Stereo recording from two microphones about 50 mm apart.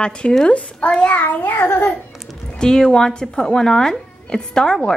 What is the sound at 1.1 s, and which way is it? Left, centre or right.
Child singing, left.